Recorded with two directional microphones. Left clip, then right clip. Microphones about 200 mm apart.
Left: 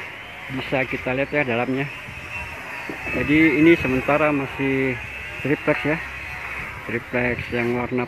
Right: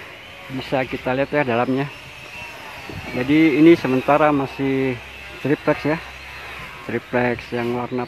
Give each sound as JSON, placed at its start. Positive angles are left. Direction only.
{"t": 0.6, "sound": "speech", "side_deg": -15}
{"t": 3.3, "sound": "speech", "side_deg": -15}